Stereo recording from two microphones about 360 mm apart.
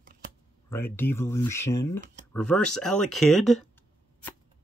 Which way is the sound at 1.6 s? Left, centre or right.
Left.